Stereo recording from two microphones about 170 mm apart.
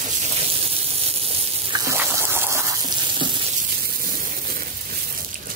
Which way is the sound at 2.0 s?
15° right (ahead or behind).